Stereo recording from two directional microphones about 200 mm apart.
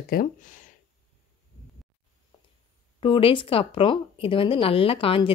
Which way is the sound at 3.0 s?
25° left (ahead or behind).